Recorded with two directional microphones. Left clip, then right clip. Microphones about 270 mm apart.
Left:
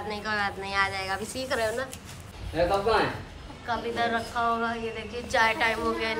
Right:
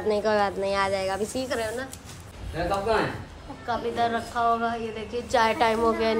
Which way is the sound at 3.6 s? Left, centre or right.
Centre.